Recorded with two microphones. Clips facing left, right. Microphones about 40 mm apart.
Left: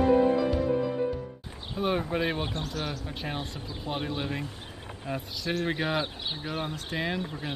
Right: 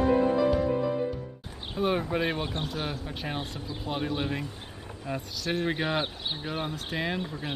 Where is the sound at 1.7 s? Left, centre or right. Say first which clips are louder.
Right 1 dB; centre.